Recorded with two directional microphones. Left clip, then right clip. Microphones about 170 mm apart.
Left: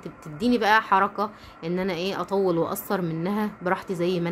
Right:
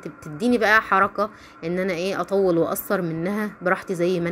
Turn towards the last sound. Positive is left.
turn(degrees=-20)  # may be behind; listen again after turning